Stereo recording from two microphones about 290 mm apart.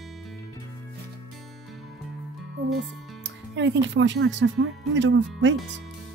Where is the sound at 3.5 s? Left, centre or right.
Right.